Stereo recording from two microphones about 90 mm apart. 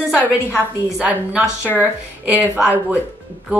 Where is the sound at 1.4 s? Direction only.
25° left (ahead or behind).